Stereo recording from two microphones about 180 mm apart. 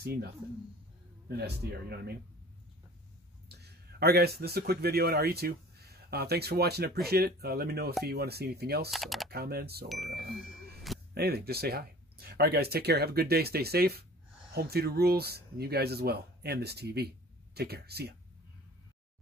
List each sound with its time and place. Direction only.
0.0 s speech: 60° right (ahead or behind)
1.3 s speech: 65° right (ahead or behind)
3.4 s speech: 60° right (ahead or behind)
8.9 s speech: centre (ahead or behind)
9.3 s speech: 60° right (ahead or behind)